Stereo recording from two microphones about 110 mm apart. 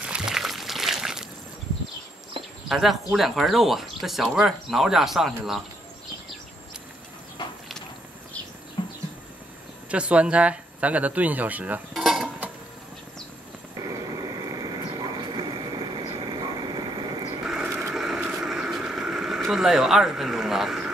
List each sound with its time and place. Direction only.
0.0 s a sound: 5° right (ahead or behind)
2.7 s speech: centre (ahead or behind)
8.8 s a sound: 50° left (ahead or behind)
9.8 s speech: 10° right (ahead or behind)
11.9 s cutlery: centre (ahead or behind)
13.7 s vehicle: 35° right (ahead or behind)
14.9 s train: 45° right (ahead or behind)
17.9 s a sound: 5° right (ahead or behind)
18.2 s vehicle: 10° right (ahead or behind)